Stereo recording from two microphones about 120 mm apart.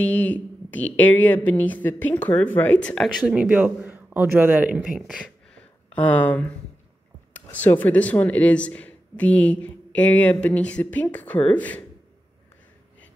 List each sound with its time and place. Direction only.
0.0 s speech: 15° left (ahead or behind)
3.3 s speech: 10° right (ahead or behind)
5.0 s a sound: 5° left (ahead or behind)
7.3 s speech: 15° left (ahead or behind)